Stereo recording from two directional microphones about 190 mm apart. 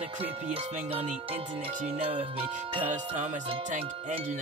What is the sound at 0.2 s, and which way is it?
Music, 30° right (ahead or behind).